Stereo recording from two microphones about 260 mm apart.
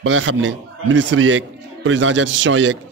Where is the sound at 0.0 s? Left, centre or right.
Right.